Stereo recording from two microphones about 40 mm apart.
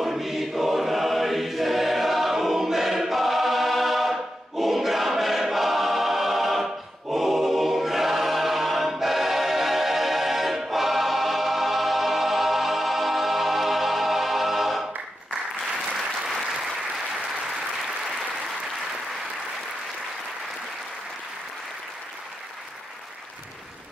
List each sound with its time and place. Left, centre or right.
0.0 s choir: centre